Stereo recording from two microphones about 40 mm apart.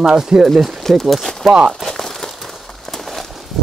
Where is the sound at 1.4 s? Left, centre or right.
Centre.